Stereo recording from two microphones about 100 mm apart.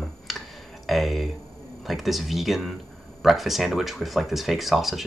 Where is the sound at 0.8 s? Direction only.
Centre (ahead or behind).